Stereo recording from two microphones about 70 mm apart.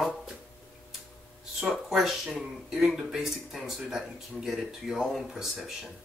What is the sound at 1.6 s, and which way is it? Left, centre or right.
Speech, centre.